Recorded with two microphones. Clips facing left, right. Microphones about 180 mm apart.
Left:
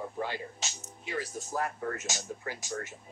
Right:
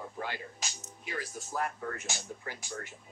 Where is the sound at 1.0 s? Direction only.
35° left (ahead or behind).